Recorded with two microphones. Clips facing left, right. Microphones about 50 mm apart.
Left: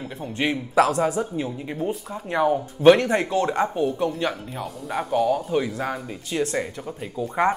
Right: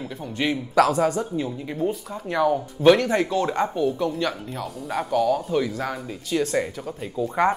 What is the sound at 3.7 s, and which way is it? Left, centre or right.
Speech, centre.